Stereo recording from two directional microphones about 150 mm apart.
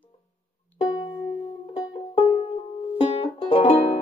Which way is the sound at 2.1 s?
40° left (ahead or behind).